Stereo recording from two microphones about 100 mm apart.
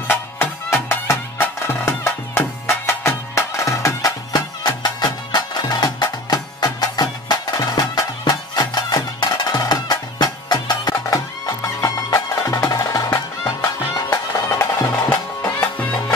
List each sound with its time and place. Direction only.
0.1 s music: 25° left (ahead or behind)
15.0 s music: 15° left (ahead or behind)